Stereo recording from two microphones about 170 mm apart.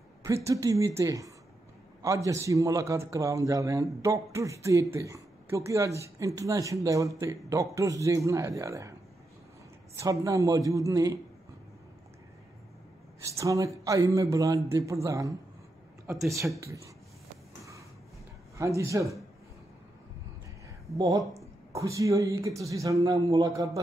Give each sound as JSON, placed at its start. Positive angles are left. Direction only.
{"t": 0.5, "sound": "a man's voice", "side_deg": -20}
{"t": 9.9, "sound": "a man's voice", "side_deg": -20}
{"t": 13.2, "sound": "a man's voice", "side_deg": -20}
{"t": 18.6, "sound": "speech", "side_deg": -20}
{"t": 21.7, "sound": "a man's voice", "side_deg": -20}